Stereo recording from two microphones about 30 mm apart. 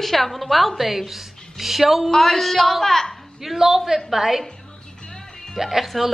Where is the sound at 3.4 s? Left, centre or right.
Centre.